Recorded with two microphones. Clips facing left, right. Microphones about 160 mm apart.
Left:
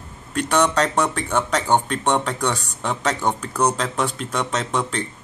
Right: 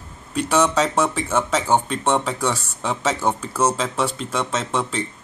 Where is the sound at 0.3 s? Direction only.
5° right (ahead or behind).